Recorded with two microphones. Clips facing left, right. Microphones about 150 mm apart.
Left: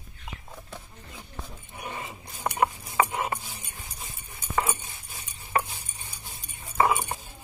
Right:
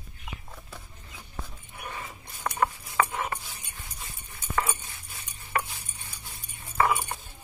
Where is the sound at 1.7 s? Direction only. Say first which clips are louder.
Left 2 dB; 20° left (ahead or behind).